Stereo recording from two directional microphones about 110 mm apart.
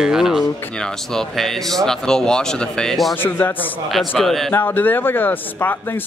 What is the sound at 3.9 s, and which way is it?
Speech, centre (ahead or behind).